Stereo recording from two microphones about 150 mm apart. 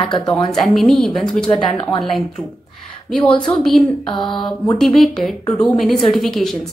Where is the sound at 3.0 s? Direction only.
5° left (ahead or behind).